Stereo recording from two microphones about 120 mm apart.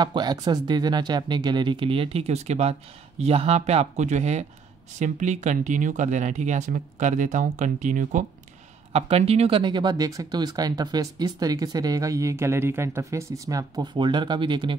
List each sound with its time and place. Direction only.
0.0 s speech: 35° right (ahead or behind); by 8.3 s 90° right
8.9 s speech: 55° right (ahead or behind)
9.6 s speech: 40° right (ahead or behind)
13.9 s speech: 40° right (ahead or behind)